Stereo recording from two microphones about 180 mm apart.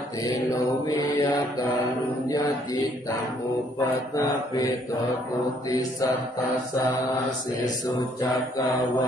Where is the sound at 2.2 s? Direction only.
20° left (ahead or behind).